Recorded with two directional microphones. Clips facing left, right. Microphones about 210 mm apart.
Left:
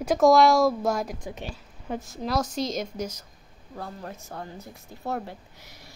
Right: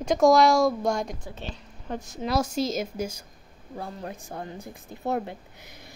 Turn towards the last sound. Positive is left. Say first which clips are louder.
# right 3 dB
turn(degrees=-20)  # may be behind; listen again after turning